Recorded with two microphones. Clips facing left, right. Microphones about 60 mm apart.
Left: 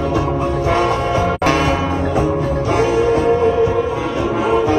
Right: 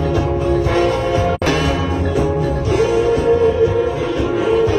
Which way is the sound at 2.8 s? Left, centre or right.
Left.